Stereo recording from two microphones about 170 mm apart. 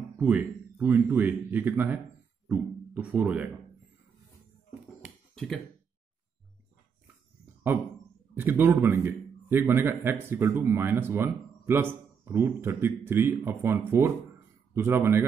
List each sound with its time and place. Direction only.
0.2 s a man's voice: 10° right (ahead or behind)
5.3 s a sound: 5° left (ahead or behind)
7.7 s a man's voice: 15° right (ahead or behind)